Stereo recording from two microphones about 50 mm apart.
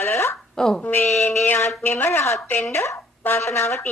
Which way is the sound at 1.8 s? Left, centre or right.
Left.